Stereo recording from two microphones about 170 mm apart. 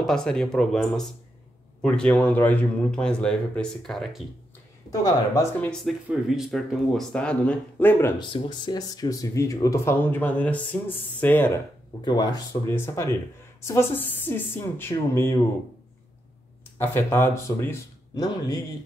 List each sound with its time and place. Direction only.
0.0 s speech: 5° left (ahead or behind)
5.0 s speech: 20° left (ahead or behind)
5.6 s speech: 5° left (ahead or behind)
8.2 s speech: 25° left (ahead or behind)
12.0 s speech: 25° left (ahead or behind)
16.7 s speech: 15° left (ahead or behind)